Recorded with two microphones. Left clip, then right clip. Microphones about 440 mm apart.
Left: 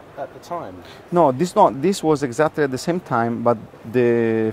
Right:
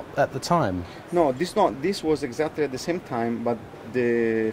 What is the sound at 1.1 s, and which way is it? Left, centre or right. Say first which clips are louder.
Speech: left 6 dB; left.